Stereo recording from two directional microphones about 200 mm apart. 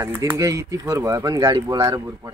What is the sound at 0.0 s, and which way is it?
Speech, 15° right (ahead or behind).